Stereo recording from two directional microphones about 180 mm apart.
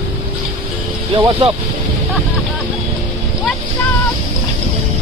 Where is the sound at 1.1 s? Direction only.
25° right (ahead or behind).